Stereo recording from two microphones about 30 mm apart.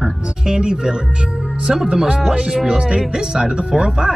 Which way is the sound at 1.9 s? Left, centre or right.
Centre.